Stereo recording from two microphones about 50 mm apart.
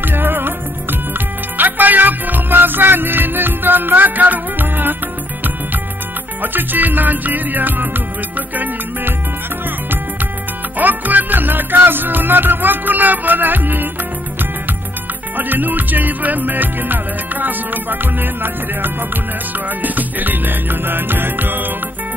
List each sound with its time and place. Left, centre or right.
0.0 s music: right
6.4 s music: right
10.8 s music: right
15.3 s music: right